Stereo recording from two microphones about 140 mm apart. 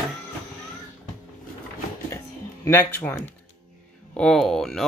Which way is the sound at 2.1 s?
20° left (ahead or behind).